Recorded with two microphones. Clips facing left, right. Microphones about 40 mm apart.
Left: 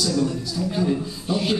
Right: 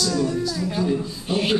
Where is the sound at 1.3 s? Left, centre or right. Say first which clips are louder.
Right 1 dB; right.